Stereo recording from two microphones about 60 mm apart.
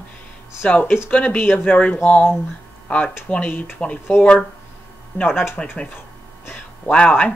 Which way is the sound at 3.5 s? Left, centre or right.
Left.